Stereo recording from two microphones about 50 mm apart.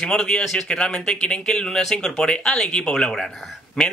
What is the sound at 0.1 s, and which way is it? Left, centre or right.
Speech, centre.